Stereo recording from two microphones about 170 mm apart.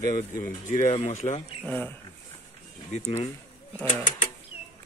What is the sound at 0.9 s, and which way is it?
Speech, 35° left (ahead or behind).